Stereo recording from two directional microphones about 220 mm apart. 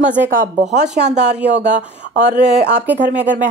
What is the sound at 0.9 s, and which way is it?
Speech, 50° right (ahead or behind).